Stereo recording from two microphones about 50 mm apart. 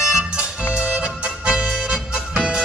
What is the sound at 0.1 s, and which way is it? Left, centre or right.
Music, right.